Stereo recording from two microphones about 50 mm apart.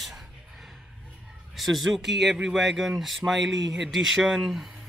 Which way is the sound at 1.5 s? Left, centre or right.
Centre.